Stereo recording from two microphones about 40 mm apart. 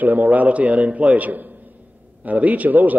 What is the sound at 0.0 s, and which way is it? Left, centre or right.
A man's voice, right.